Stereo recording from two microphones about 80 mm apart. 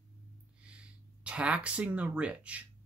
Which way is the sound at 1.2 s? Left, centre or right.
Centre.